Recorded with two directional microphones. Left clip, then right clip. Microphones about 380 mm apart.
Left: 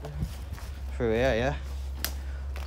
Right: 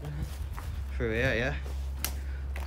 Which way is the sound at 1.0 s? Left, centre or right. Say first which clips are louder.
Left 4 dB; centre.